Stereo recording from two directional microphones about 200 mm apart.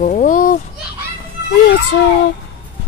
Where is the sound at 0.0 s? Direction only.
40° left (ahead or behind).